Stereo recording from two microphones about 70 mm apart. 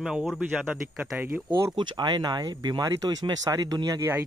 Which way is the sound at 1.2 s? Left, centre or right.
Right.